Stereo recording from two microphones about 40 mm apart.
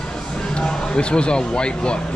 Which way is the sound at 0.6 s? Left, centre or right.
Left.